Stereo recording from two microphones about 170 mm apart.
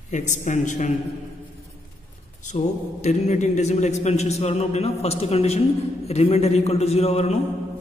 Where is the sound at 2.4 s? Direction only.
45° left (ahead or behind).